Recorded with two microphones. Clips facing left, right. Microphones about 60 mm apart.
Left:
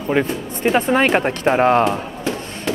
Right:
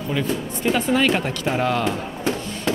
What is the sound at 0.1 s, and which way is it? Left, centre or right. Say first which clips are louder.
Speech: left 5 dB; left.